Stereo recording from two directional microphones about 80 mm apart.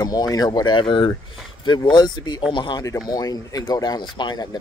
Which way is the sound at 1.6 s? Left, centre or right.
Left.